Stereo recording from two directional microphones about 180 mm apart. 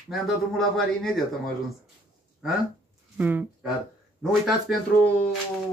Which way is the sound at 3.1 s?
10° right (ahead or behind).